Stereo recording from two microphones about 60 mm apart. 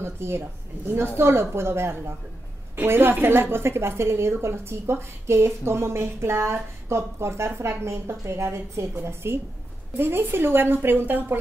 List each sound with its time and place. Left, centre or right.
0.0 s a woman's voice: right